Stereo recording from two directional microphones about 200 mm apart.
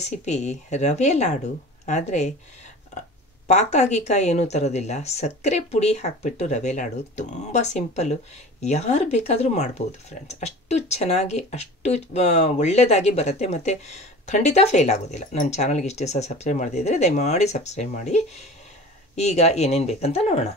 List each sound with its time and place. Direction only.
0.0 s speech: 35° left (ahead or behind)
3.4 s speech: 35° left (ahead or behind)